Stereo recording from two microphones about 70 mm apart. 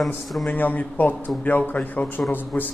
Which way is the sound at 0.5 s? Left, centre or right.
Left.